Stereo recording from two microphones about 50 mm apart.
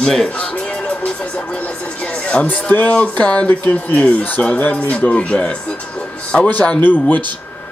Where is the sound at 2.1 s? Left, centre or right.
Left.